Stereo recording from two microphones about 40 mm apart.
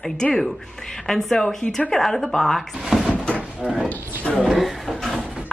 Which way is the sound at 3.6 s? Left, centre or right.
Right.